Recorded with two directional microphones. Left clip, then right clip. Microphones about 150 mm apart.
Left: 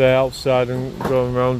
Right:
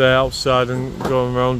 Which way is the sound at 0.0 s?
10° right (ahead or behind).